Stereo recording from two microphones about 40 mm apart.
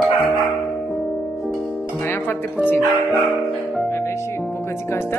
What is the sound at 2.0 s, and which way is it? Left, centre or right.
Music, left.